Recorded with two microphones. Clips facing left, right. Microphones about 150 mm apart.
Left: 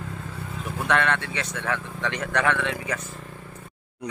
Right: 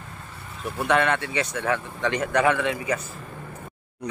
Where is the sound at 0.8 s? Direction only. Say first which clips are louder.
Right 2 dB; 5° right (ahead or behind).